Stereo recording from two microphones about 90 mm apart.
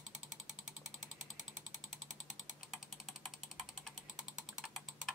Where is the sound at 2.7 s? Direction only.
Centre (ahead or behind).